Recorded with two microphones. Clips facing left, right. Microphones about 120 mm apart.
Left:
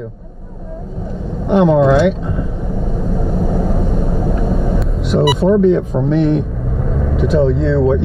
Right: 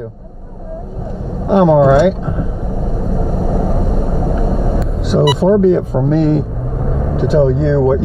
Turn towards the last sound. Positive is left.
turn(degrees=0)  # may be behind; listen again after turning